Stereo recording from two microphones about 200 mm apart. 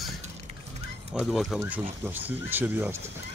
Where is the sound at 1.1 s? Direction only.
Centre (ahead or behind).